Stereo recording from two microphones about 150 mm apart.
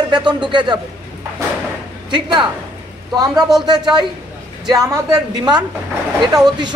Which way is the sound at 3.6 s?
30° right (ahead or behind).